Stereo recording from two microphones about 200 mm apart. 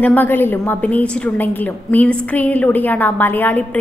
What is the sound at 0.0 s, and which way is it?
A woman's voice, 10° left (ahead or behind).